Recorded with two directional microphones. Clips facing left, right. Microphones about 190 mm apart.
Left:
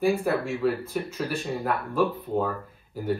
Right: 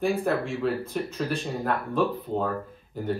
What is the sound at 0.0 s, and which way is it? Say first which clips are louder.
Speech: left 1 dB; centre (ahead or behind).